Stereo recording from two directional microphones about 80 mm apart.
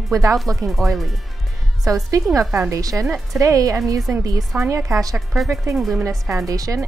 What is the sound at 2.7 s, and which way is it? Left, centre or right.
A woman's voice, right.